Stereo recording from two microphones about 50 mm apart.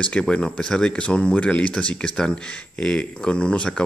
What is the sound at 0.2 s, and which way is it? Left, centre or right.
Speech, centre.